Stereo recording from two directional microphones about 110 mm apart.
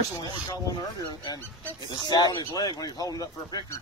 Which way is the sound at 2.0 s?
40° left (ahead or behind).